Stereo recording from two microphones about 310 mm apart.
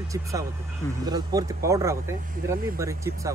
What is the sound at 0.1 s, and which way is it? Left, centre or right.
Speech, centre.